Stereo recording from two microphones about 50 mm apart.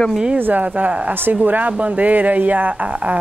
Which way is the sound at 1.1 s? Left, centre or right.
Right.